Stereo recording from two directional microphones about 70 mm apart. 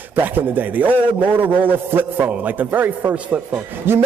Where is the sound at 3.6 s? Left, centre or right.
Right.